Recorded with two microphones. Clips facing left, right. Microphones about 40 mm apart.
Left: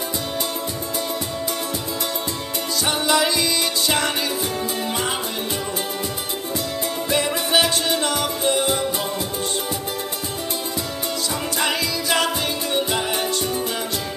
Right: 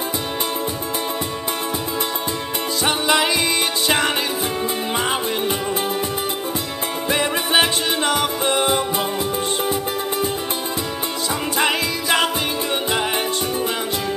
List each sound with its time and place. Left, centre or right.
2.8 s music: right
7.1 s music: right
11.5 s music: right